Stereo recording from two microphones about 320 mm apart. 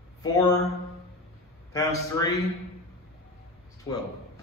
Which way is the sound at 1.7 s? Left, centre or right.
Centre.